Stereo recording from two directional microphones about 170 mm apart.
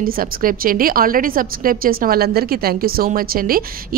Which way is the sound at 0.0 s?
55° right (ahead or behind).